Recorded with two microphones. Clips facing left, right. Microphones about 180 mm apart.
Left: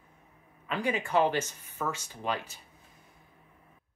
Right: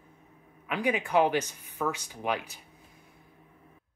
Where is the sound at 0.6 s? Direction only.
15° right (ahead or behind).